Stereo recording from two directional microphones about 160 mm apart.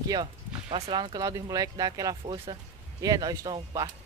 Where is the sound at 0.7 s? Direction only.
40° right (ahead or behind).